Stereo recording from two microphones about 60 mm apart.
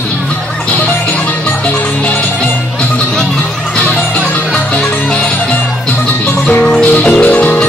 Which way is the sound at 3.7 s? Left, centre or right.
Centre.